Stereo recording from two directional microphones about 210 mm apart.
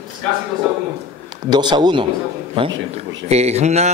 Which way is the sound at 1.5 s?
20° right (ahead or behind).